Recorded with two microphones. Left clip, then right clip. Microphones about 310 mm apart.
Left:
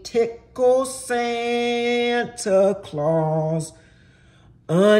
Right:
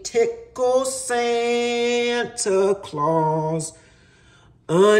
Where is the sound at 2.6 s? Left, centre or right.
Right.